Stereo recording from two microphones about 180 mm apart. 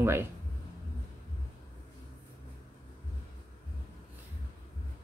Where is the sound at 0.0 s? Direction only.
15° right (ahead or behind).